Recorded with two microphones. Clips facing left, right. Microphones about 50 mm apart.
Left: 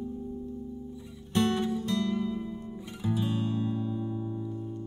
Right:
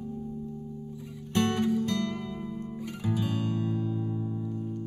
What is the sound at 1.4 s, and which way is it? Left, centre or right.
Music, right.